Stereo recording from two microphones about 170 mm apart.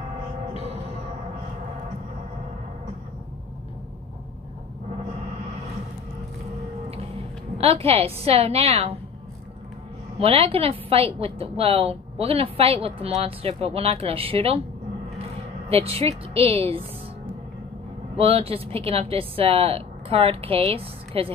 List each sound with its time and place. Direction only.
6.9 s a woman's voice: 35° right (ahead or behind)
10.1 s a woman's voice: 35° right (ahead or behind)
18.1 s a woman's voice: 35° right (ahead or behind)